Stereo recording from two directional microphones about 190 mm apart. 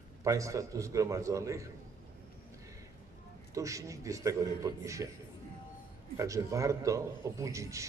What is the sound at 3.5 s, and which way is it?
A man's voice, 15° right (ahead or behind).